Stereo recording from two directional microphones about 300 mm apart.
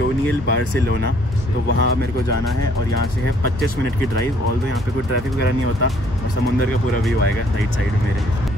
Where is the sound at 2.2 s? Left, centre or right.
Left.